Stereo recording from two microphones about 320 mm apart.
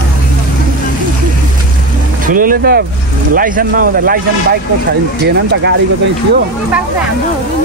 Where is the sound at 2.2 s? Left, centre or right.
Right.